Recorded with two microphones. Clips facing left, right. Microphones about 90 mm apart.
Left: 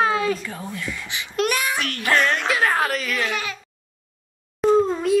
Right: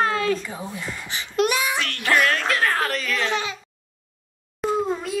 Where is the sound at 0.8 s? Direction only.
35° right (ahead or behind).